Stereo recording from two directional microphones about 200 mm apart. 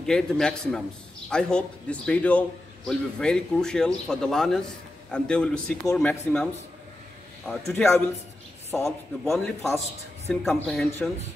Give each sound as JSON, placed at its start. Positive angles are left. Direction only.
{"t": 0.0, "sound": "speech", "side_deg": 5}